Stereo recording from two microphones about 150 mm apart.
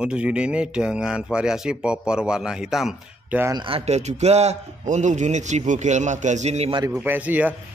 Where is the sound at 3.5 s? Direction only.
35° right (ahead or behind).